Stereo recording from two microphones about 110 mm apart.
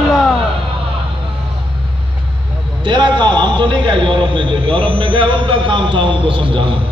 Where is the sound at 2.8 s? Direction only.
45° right (ahead or behind).